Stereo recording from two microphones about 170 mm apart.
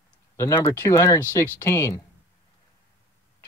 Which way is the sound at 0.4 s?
20° left (ahead or behind).